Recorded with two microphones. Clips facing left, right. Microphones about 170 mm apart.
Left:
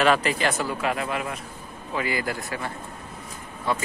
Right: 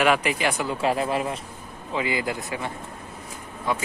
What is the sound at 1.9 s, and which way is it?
A man's voice, 20° right (ahead or behind).